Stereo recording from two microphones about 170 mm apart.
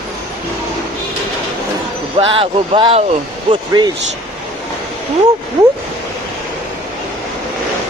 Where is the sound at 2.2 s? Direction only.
30° right (ahead or behind).